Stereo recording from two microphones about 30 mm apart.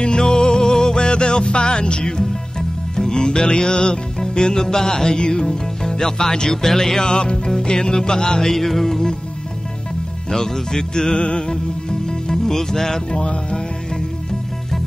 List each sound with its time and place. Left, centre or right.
0.0 s music: left
7.1 s music: left; by 9.1 s centre
10.3 s music: centre
11.1 s music: left
12.1 s music: centre
13.1 s music: left